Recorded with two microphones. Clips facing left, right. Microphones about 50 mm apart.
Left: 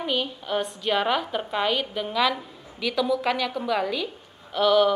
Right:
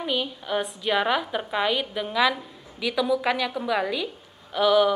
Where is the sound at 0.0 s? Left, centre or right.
Centre.